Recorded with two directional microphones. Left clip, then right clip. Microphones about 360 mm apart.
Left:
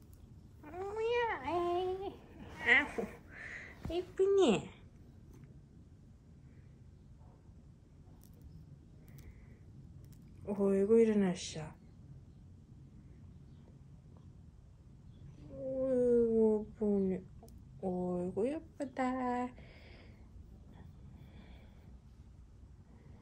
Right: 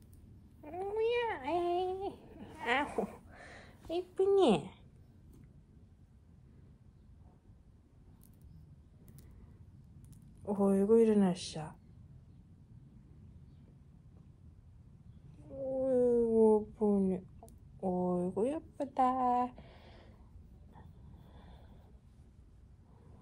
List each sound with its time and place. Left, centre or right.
0.7 s cat: centre
3.9 s speech: centre
10.4 s a woman's voice: centre
15.8 s a sound: centre
17.7 s a sound: right
18.9 s speech: centre